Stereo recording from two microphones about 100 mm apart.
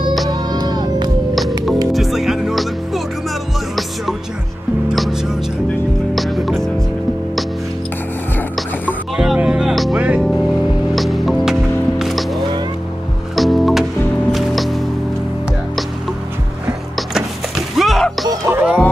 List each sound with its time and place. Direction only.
0.3 s music: 45° right (ahead or behind)
1.9 s music: centre (ahead or behind)
4.8 s music: 5° right (ahead or behind)
9.1 s music: 5° right (ahead or behind)
9.9 s music: 15° right (ahead or behind)
11.0 s music: centre (ahead or behind)
13.4 s music: centre (ahead or behind)
17.7 s music: centre (ahead or behind)
18.5 s music: 20° right (ahead or behind)